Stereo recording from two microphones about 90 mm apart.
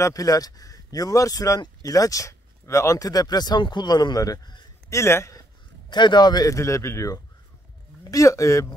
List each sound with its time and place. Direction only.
0.0 s speech: 40° left (ahead or behind)
3.1 s a man's voice: 45° left (ahead or behind); by 5.4 s 30° left (ahead or behind)
5.9 s speech: 55° left (ahead or behind); by 8.6 s 35° left (ahead or behind)